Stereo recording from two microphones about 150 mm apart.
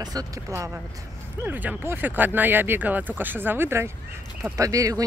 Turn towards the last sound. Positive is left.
turn(degrees=-20)  # may be behind; listen again after turning